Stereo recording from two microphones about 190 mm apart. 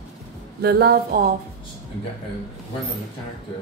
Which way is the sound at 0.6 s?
55° right (ahead or behind).